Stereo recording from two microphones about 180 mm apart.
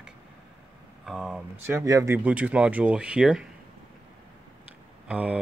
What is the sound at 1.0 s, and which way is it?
Speech, centre (ahead or behind).